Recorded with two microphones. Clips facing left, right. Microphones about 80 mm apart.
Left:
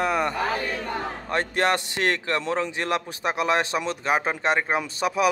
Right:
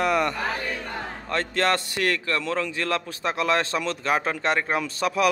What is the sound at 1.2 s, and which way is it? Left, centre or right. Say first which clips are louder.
A man's voice: even; centre.